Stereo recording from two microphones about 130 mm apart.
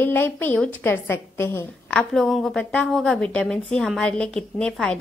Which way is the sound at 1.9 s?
5° left (ahead or behind).